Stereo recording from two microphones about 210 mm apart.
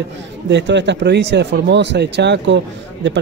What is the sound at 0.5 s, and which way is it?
Speech, 55° right (ahead or behind).